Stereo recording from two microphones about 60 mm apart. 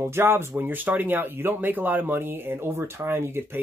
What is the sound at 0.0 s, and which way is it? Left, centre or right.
Speech, right.